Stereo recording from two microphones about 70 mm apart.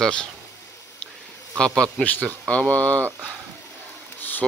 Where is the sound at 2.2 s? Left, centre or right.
Centre.